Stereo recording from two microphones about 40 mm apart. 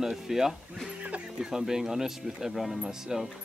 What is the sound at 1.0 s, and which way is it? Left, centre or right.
Music, right.